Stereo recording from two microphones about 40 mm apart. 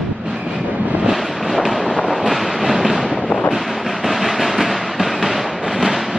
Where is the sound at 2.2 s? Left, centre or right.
Centre.